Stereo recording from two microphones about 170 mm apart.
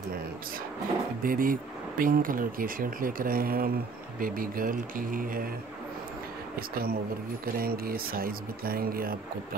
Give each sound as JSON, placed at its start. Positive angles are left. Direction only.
{"t": 1.2, "sound": "speech", "side_deg": -55}
{"t": 6.7, "sound": "speech", "side_deg": -60}